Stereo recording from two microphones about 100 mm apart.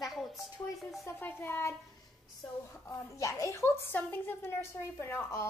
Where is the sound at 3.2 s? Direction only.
30° left (ahead or behind).